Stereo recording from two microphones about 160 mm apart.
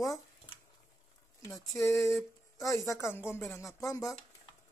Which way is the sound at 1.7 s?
15° left (ahead or behind).